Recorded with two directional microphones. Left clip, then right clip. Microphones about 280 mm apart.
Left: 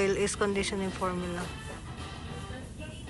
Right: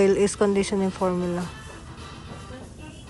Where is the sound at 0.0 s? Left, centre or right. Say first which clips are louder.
Right 8 dB; centre.